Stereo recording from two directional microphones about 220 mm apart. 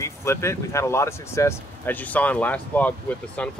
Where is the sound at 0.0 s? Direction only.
10° left (ahead or behind).